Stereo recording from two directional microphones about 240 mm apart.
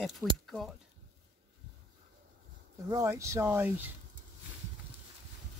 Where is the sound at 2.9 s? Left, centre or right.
Centre.